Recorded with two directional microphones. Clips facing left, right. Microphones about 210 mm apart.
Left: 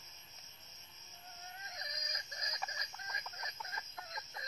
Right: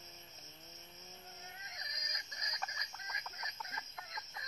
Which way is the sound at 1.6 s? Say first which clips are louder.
Left 4 dB; 30° left (ahead or behind).